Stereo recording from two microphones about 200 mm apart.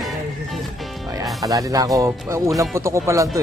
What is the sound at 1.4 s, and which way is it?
Speech, 15° right (ahead or behind).